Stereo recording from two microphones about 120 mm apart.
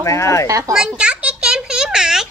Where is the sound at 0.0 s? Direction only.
25° left (ahead or behind).